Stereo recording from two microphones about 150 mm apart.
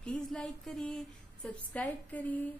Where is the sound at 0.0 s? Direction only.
5° left (ahead or behind).